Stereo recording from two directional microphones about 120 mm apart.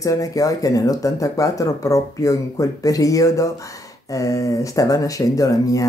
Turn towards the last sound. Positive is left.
turn(degrees=30)  # may be behind; listen again after turning